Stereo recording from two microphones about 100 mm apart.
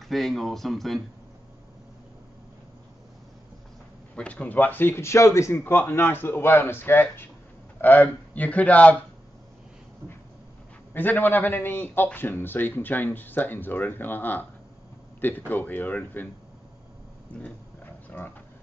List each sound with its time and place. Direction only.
0.1 s speech: centre (ahead or behind)
4.1 s a man's voice: 10° left (ahead or behind)
10.9 s a man's voice: 20° left (ahead or behind)
17.3 s speech: 15° left (ahead or behind)